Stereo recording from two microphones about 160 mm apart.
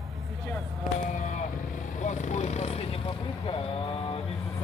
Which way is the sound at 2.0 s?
50° left (ahead or behind).